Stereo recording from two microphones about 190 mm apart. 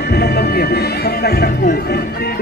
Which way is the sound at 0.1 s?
55° left (ahead or behind).